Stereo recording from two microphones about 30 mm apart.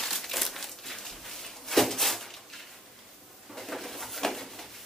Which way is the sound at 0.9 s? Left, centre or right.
Centre.